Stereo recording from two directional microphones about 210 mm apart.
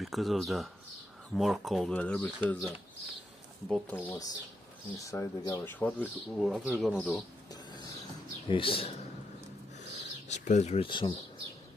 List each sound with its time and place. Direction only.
0.0 s speech: centre (ahead or behind)
3.9 s speech: 10° left (ahead or behind)
8.5 s a man's voice: 25° left (ahead or behind)
9.8 s bird: 35° left (ahead or behind)